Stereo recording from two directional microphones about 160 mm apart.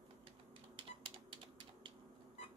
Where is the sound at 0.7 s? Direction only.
30° right (ahead or behind).